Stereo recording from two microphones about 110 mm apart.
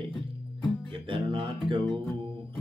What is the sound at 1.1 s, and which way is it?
Music, 50° right (ahead or behind).